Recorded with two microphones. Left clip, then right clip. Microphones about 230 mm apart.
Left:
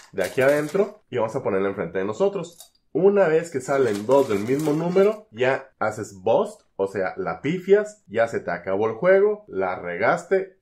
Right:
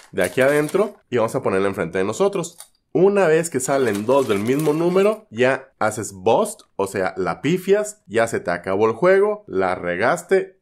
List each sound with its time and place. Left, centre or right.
0.1 s speech: right